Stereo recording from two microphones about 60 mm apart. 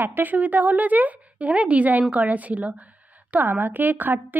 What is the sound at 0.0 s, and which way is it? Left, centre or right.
A woman's voice, right.